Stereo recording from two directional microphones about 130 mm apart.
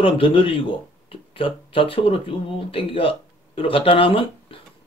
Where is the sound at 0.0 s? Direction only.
45° left (ahead or behind).